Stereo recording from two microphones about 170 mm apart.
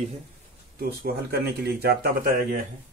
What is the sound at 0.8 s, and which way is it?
Speech, 65° right (ahead or behind).